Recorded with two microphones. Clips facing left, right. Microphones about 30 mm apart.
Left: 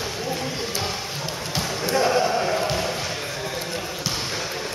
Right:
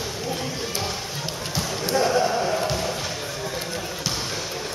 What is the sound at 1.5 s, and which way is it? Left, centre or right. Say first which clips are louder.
Basketball bounce: left 1 dB; left.